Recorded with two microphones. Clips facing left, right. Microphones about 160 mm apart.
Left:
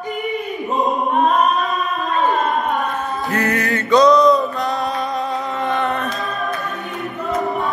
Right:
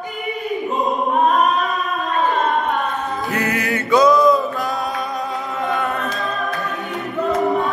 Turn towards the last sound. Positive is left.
turn(degrees=0)  # may be behind; listen again after turning